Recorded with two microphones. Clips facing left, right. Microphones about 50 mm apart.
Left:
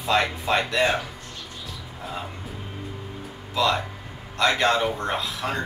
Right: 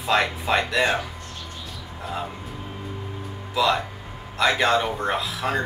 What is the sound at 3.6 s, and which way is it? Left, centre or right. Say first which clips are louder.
Speech: right 1 dB; centre.